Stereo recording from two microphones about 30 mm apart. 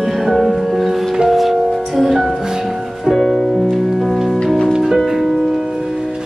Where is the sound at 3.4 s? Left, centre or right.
Centre.